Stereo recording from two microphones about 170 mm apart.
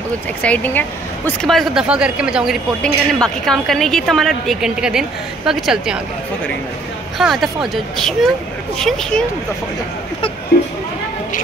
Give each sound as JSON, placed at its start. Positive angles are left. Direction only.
{"t": 0.4, "sound": "a woman's voice", "side_deg": 10}
{"t": 7.2, "sound": "a woman's voice", "side_deg": 0}
{"t": 10.5, "sound": "speech", "side_deg": 60}